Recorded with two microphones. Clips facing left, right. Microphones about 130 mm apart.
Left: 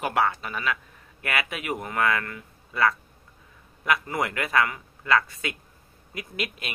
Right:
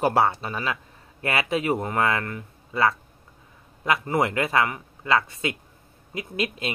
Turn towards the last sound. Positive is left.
turn(degrees=-25)  # may be behind; listen again after turning